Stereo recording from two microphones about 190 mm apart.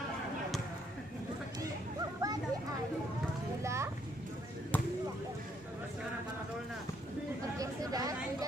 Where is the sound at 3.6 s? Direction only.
15° right (ahead or behind).